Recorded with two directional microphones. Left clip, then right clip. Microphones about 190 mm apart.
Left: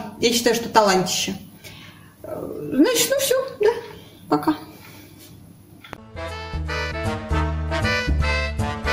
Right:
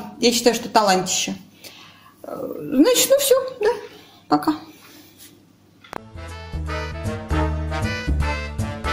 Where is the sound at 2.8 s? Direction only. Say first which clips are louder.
Right 3 dB; 35° right (ahead or behind).